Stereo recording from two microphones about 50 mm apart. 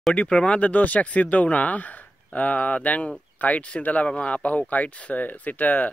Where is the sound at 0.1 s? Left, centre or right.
Left.